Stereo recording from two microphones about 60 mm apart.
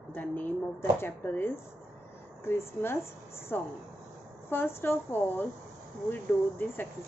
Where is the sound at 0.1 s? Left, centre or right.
Left.